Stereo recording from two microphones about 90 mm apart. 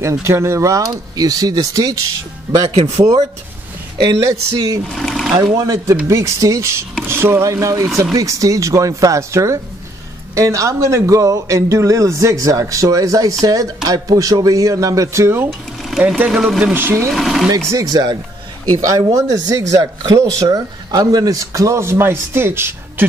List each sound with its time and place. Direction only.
0.0 s speech: 30° right (ahead or behind)
3.0 s speech: 40° right (ahead or behind)
4.3 s speech: 40° right (ahead or behind)
4.9 s a sound: 5° left (ahead or behind)
5.4 s speech: 40° right (ahead or behind)
16.7 s speech: 25° right (ahead or behind)
17.1 s speech: centre (ahead or behind)
17.5 s speech: 40° right (ahead or behind)
17.9 s speech: 50° right (ahead or behind); by 23.0 s 25° right (ahead or behind)